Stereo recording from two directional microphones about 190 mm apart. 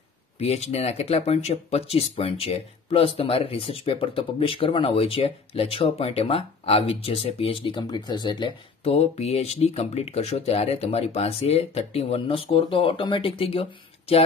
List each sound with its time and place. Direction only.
0.4 s speech: 35° left (ahead or behind)